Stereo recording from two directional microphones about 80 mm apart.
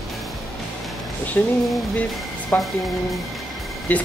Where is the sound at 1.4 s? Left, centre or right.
Left.